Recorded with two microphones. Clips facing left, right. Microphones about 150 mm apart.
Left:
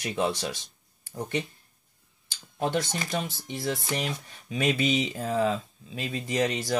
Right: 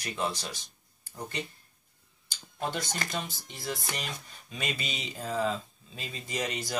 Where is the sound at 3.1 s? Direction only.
65° left (ahead or behind).